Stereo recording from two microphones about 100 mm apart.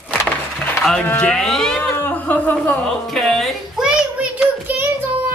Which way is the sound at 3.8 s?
10° right (ahead or behind).